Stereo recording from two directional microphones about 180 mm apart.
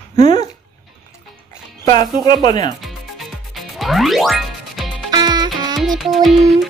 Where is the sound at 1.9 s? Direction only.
25° left (ahead or behind).